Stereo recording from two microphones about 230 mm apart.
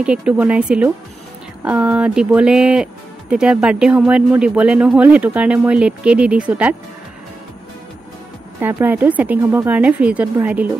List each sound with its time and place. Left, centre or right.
0.0 s speech: centre
8.5 s speech: centre